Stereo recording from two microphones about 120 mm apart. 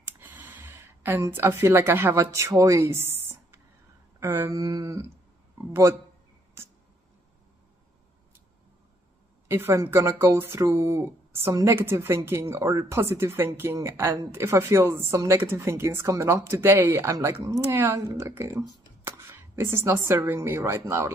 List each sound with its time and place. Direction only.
0.2 s a woman's voice: 15° right (ahead or behind)
4.6 s a woman's voice: 30° right (ahead or behind)
9.5 s a woman's voice: 20° right (ahead or behind)